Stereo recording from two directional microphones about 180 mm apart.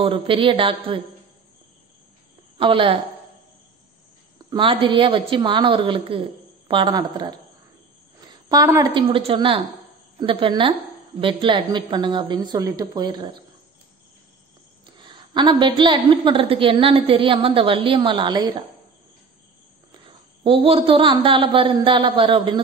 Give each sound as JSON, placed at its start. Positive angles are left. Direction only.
{"t": 0.0, "sound": "a woman's voice", "side_deg": -30}
{"t": 2.5, "sound": "a woman's voice", "side_deg": -30}
{"t": 4.5, "sound": "a woman's voice", "side_deg": -30}
{"t": 14.9, "sound": "a woman's voice", "side_deg": -25}
{"t": 19.9, "sound": "a woman's voice", "side_deg": -30}